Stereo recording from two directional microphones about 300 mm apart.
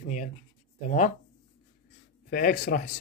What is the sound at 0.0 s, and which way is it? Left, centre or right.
Writing, left.